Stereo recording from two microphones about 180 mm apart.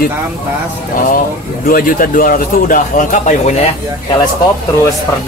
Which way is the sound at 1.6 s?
50° left (ahead or behind).